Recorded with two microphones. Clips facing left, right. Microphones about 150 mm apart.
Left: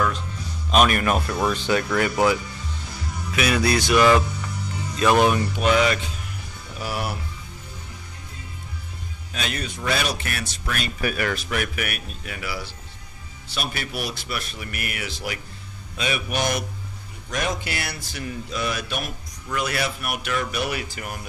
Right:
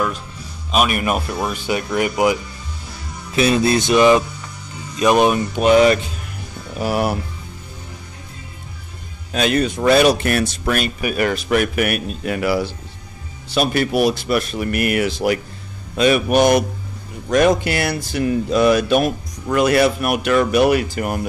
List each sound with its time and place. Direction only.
0.7 s speech: 10° right (ahead or behind)
3.3 s music: 25° right (ahead or behind)
6.8 s speech: 50° right (ahead or behind)
9.3 s speech: 65° right (ahead or behind)
11.1 s music: 25° right (ahead or behind)
11.8 s speech: 65° right (ahead or behind)
13.9 s speech: 80° right
19.4 s speech: 60° right (ahead or behind)